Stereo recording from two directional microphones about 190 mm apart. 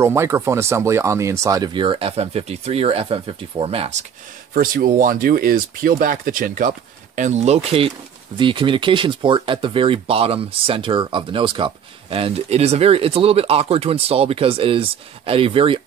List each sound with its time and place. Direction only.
0.0 s speech: 15° right (ahead or behind); by 4.0 s 30° right (ahead or behind)
4.6 s speech: 50° right (ahead or behind)
7.2 s speech: 35° right (ahead or behind)